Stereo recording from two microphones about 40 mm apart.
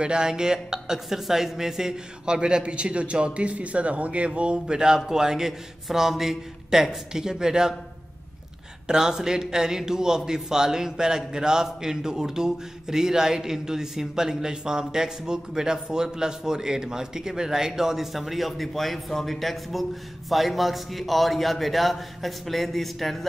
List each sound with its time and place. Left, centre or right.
0.0 s a woman's voice: right
4.4 s a man's voice: right
8.8 s a man's voice: centre